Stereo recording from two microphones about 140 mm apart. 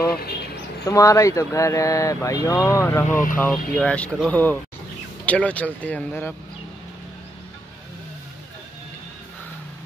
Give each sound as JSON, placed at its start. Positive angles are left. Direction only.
{"t": 0.8, "sound": "speech", "side_deg": 25}